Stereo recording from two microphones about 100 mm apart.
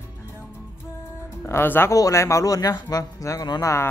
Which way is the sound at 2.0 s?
30° left (ahead or behind).